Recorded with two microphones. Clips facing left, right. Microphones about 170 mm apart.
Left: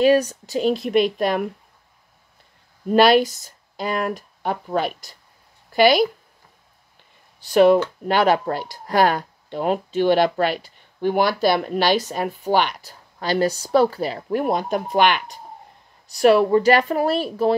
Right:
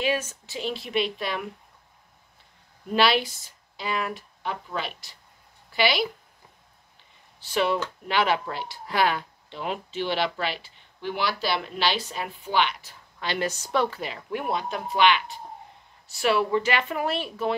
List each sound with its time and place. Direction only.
0.0 s speech: 40° left (ahead or behind)
2.9 s speech: 45° left (ahead or behind)
7.4 s speech: 45° left (ahead or behind)